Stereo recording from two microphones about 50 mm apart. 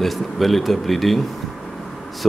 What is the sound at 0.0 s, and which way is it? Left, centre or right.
Speech, centre.